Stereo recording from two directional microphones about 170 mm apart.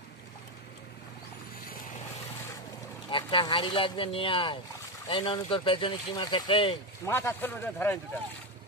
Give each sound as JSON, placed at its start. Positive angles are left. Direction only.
{"t": 3.1, "sound": "speech", "side_deg": 30}
{"t": 7.1, "sound": "speech", "side_deg": 15}